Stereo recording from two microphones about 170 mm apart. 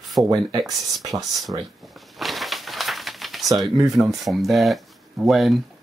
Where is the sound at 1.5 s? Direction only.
25° right (ahead or behind).